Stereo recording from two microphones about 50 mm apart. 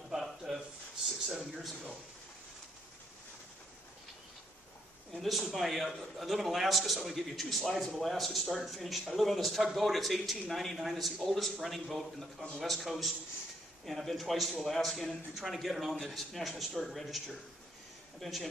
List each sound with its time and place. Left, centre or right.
0.1 s a sound: centre
5.1 s a man's voice: centre
18.2 s a man's voice: centre